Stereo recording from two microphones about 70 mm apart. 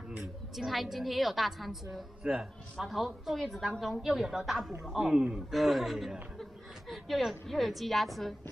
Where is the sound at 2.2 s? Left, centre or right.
Centre.